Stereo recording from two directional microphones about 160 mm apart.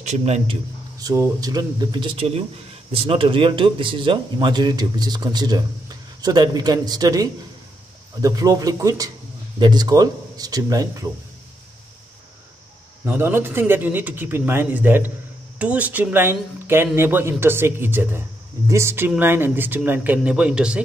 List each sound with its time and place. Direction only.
0.0 s a man's voice: 45° right (ahead or behind)
0.9 s speech: 20° right (ahead or behind)
13.0 s speech: 15° right (ahead or behind)